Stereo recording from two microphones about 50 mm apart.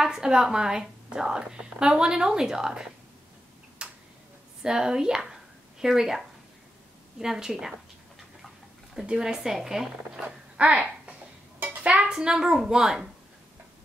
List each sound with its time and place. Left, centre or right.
0.0 s a woman's voice: centre
3.8 s tick-tock: centre
4.6 s a woman's voice: centre
8.9 s a woman's voice: centre
10.2 s babbling: right
11.6 s speech: right; by 13.1 s centre